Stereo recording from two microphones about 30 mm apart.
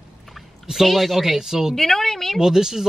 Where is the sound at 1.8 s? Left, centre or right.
Centre.